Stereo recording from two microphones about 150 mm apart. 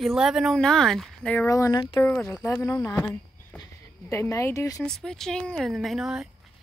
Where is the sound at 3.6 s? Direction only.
20° left (ahead or behind).